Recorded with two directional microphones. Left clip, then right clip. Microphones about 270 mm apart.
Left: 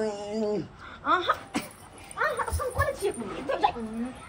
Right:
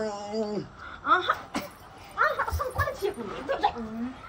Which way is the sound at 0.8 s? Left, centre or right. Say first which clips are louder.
Right 1 dB; centre.